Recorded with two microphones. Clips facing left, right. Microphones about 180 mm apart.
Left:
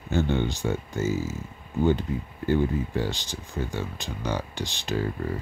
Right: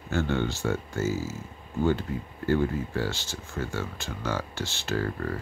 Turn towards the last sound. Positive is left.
turn(degrees=15)  # may be behind; listen again after turning